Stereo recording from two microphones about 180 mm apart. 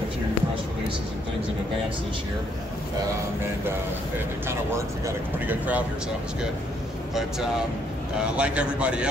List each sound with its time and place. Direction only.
4.5 s a man's voice: 15° right (ahead or behind)
8.4 s a man's voice: 5° right (ahead or behind)